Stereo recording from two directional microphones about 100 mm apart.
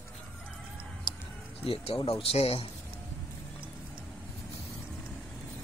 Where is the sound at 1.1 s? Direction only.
55° left (ahead or behind).